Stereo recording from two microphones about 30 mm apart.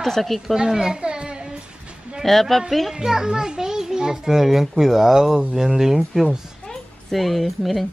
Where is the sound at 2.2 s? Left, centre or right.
Centre.